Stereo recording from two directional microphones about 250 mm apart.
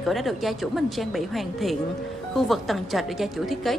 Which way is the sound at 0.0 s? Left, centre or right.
Centre.